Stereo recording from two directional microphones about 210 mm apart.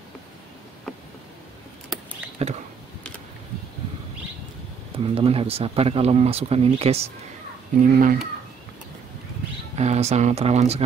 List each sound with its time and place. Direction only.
2.4 s speech: 30° right (ahead or behind)
4.9 s speech: 25° right (ahead or behind)
7.8 s speech: 40° right (ahead or behind)
9.8 s speech: 30° right (ahead or behind)